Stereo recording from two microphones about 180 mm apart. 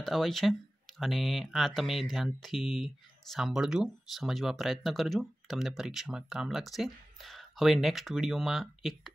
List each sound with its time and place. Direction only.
0.0 s speech: centre (ahead or behind)